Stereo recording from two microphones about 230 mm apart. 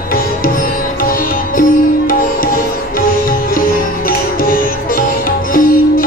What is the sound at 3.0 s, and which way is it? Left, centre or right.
Sitar, left.